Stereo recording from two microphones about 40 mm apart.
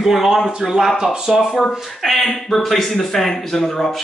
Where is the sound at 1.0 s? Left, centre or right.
Centre.